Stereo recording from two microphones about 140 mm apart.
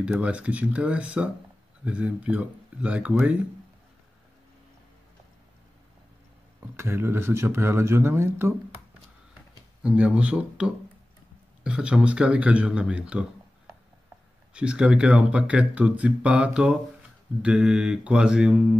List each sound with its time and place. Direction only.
0.0 s speech: 10° right (ahead or behind)
6.6 s speech: 15° right (ahead or behind)
9.8 s speech: 10° right (ahead or behind)
14.5 s speech: 5° right (ahead or behind)